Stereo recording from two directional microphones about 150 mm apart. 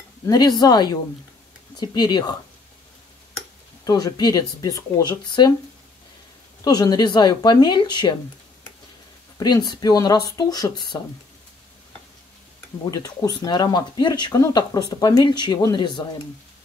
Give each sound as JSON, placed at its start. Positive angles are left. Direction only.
{"t": 0.3, "sound": "speech", "side_deg": 25}
{"t": 3.8, "sound": "speech", "side_deg": 25}
{"t": 6.6, "sound": "speech", "side_deg": 25}
{"t": 9.4, "sound": "speech", "side_deg": 25}
{"t": 12.9, "sound": "speech", "side_deg": 25}